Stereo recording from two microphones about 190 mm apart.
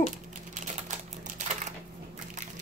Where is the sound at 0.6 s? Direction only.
40° right (ahead or behind).